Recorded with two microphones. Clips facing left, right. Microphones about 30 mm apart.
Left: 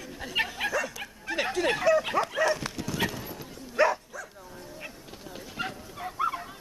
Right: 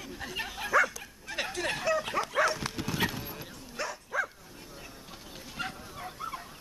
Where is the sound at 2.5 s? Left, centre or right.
Centre.